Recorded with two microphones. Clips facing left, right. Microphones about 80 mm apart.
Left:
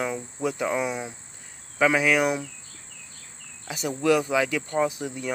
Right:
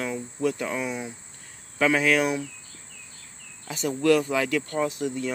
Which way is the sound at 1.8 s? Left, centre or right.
Centre.